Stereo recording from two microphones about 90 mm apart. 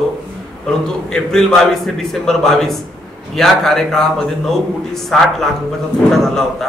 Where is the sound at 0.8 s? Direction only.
5° left (ahead or behind).